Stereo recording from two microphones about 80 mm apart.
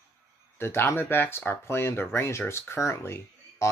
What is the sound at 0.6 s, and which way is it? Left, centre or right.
Speech, left.